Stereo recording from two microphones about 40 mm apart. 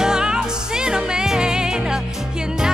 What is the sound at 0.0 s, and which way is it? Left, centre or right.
Music, centre.